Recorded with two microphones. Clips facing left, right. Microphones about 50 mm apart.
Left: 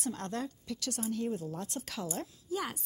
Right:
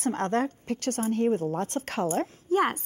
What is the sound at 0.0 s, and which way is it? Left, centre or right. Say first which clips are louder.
A woman's voice: right 10 dB; right.